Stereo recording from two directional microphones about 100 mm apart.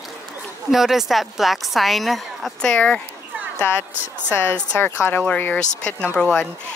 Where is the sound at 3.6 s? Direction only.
25° left (ahead or behind); by 6.4 s 10° left (ahead or behind).